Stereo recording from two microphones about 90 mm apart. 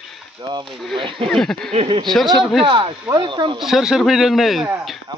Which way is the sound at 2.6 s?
65° right (ahead or behind).